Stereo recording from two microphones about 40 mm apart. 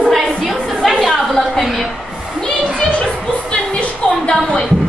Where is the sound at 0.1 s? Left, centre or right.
Centre.